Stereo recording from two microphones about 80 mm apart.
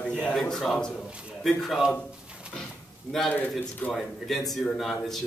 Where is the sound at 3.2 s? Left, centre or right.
Centre.